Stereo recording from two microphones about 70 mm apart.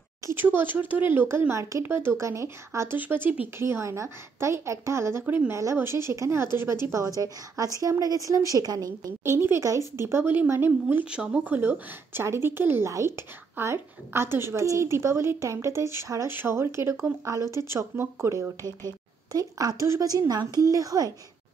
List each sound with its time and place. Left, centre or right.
0.3 s a woman's voice: right
1.5 s a woman's voice: right
3.0 s speech: right
3.5 s a woman's voice: right
5.5 s a woman's voice: right
9.2 s a woman's voice: right
11.1 s a woman's voice: centre; by 16.3 s right
16.3 s a woman's voice: right
19.3 s a woman's voice: right
20.6 s a woman's voice: right